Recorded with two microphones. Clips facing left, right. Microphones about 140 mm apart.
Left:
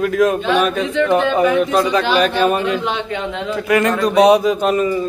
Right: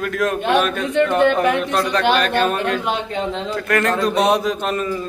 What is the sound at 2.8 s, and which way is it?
Speech, 40° right (ahead or behind).